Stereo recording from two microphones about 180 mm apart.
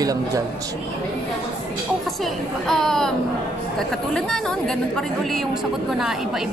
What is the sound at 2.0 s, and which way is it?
A woman's voice, centre (ahead or behind).